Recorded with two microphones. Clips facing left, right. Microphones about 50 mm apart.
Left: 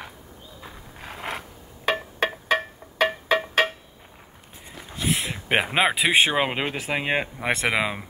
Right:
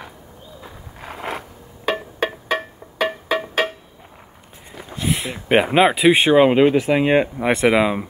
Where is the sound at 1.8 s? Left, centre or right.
Left.